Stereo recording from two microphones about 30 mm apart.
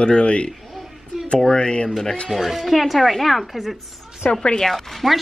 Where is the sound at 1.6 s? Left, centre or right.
Left.